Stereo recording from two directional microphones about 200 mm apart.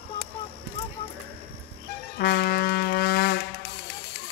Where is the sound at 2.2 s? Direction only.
50° left (ahead or behind).